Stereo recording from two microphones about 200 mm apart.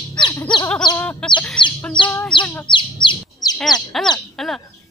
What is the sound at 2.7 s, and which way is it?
Bird, 25° left (ahead or behind).